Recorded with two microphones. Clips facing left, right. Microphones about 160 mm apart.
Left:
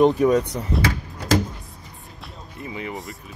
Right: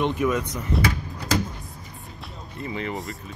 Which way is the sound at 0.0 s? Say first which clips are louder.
Left 7 dB; 35° left (ahead or behind).